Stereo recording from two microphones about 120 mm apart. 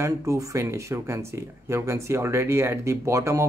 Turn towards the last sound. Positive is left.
turn(degrees=-25)  # may be behind; listen again after turning